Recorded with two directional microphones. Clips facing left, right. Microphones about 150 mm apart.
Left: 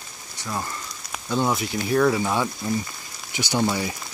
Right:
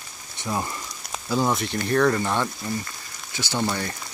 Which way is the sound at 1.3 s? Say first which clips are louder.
Even; centre (ahead or behind).